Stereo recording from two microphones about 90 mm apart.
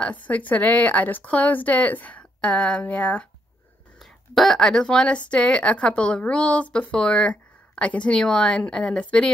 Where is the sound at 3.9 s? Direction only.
Centre (ahead or behind).